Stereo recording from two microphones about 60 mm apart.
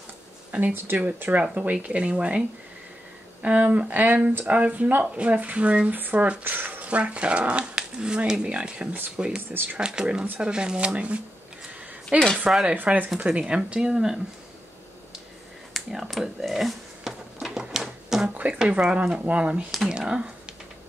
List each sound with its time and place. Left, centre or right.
0.5 s a sound: right
0.9 s speech: right
3.4 s speech: right
9.1 s speech: centre; by 13.1 s right
13.3 s speech: centre
15.9 s a sound: centre
18.5 s speech: centre